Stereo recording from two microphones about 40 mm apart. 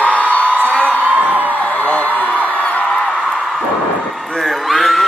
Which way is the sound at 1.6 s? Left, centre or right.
Left.